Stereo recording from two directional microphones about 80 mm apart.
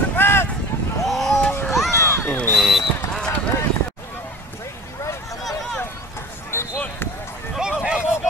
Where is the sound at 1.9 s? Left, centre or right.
Left.